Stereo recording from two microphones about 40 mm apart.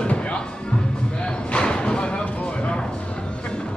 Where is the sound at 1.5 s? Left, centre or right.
Left.